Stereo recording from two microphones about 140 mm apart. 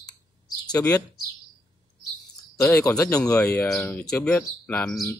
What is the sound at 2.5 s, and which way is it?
Speech, 20° left (ahead or behind).